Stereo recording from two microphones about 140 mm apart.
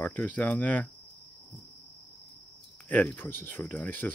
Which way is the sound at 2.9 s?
10° left (ahead or behind).